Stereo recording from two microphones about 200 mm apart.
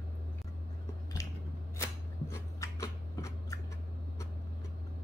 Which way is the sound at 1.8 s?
15° left (ahead or behind).